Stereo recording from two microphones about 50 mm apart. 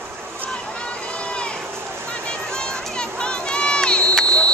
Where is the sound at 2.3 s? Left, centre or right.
Centre.